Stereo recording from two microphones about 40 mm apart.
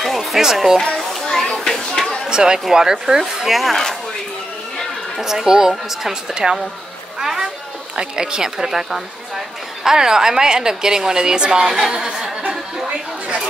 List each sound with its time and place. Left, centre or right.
0.0 s music: centre
0.4 s a woman's voice: centre
0.9 s children playing: centre
2.2 s a woman's voice: centre
3.4 s a woman's voice: centre
5.2 s a woman's voice: centre
6.4 s a woman's voice: right
7.2 s a sound: centre
7.9 s a woman's voice: centre
11.6 s a woman's voice: centre